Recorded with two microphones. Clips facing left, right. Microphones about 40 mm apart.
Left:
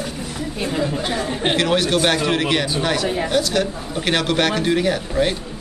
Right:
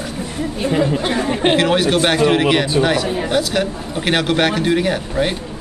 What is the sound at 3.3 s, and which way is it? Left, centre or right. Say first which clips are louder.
A man's voice: right 3 dB; centre.